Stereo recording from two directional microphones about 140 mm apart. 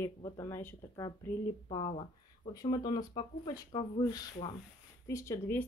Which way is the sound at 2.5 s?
30° left (ahead or behind).